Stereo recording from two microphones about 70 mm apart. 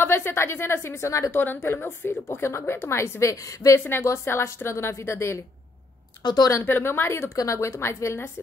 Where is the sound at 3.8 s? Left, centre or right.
Left.